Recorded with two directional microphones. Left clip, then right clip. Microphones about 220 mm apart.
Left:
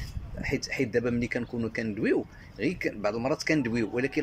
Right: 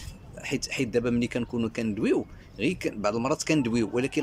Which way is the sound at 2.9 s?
5° right (ahead or behind).